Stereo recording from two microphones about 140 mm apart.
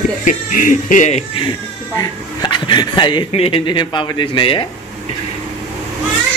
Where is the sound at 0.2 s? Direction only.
70° left (ahead or behind).